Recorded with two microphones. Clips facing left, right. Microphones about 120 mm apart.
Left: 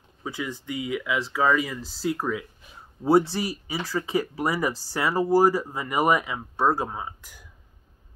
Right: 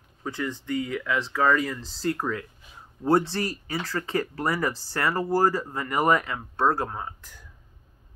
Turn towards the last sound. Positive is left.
turn(degrees=10)  # may be behind; listen again after turning